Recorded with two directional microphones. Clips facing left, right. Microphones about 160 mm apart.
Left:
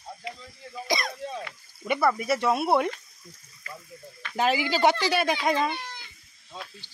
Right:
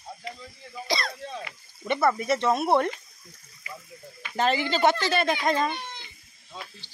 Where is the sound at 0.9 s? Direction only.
20° left (ahead or behind).